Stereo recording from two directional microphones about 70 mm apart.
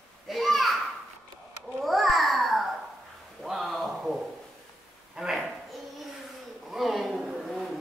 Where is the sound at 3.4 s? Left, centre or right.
Centre.